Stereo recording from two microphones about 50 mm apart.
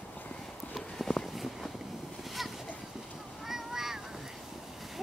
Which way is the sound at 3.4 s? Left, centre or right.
Centre.